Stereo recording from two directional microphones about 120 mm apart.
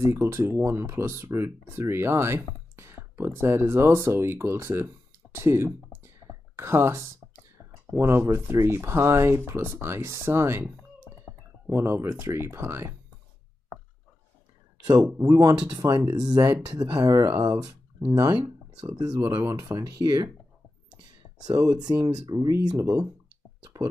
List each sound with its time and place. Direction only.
0.0 s speech: 20° right (ahead or behind)
7.5 s a sound: 20° right (ahead or behind)
8.5 s speech: 20° right (ahead or behind)
15.2 s speech: 30° right (ahead or behind)
15.9 s speech: 20° right (ahead or behind)
16.2 s speech: 35° right (ahead or behind)
20.9 s a sound: 35° right (ahead or behind)
22.3 s speech: 35° right (ahead or behind)
23.6 s a sound: 30° right (ahead or behind)